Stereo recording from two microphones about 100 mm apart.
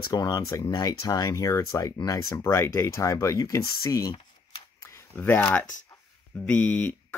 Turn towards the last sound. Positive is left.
turn(degrees=20)  # may be behind; listen again after turning